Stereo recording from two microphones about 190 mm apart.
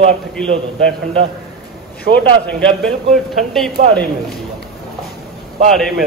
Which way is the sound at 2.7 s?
5° left (ahead or behind).